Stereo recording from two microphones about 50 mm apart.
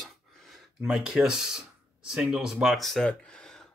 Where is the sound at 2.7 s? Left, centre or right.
Centre.